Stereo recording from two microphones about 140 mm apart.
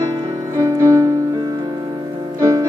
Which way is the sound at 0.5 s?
20° right (ahead or behind).